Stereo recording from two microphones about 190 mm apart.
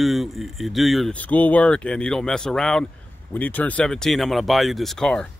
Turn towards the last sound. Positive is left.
turn(degrees=5)  # may be behind; listen again after turning